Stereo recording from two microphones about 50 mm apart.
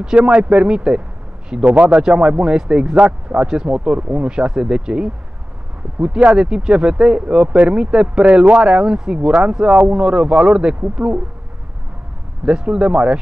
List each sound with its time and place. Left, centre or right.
0.0 s speech: right
1.6 s speech: right
2.0 s speech: centre
12.4 s speech: centre